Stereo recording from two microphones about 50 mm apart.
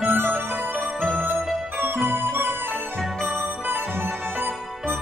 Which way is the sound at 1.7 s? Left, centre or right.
Right.